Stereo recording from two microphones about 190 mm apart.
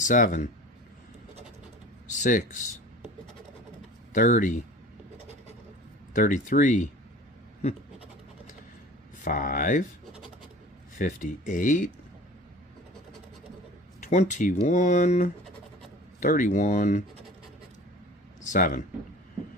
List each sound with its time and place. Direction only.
0.0 s speech: 40° left (ahead or behind)
2.0 s speech: 40° left (ahead or behind)
4.1 s speech: 45° left (ahead or behind)
6.1 s speech: 45° left (ahead or behind)
9.2 s speech: 45° left (ahead or behind)
11.0 s speech: 40° left (ahead or behind)
14.0 s speech: 40° left (ahead or behind)
18.4 s speech: 45° left (ahead or behind)